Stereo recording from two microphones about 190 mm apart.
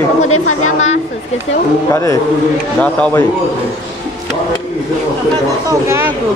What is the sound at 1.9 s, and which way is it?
A man's voice, 15° left (ahead or behind).